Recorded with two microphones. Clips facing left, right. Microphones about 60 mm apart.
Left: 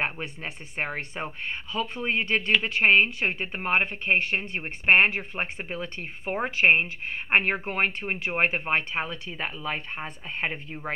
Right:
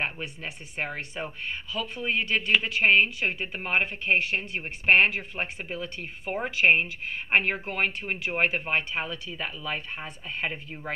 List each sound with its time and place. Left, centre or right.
0.0 s speech: left